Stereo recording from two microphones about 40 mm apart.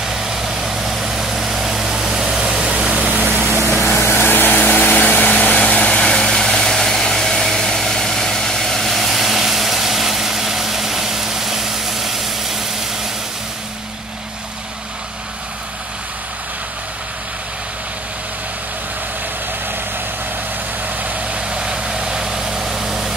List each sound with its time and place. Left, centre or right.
0.0 s vehicle: centre
2.7 s vehicle: right
3.3 s vehicle: right
3.8 s vehicle: left
5.6 s vehicle: left
5.9 s vehicle: centre
21.5 s vehicle: right